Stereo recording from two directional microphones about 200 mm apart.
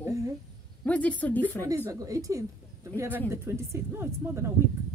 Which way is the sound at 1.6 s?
15° right (ahead or behind).